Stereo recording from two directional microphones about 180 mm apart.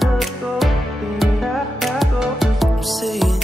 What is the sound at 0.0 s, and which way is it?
Music, centre (ahead or behind).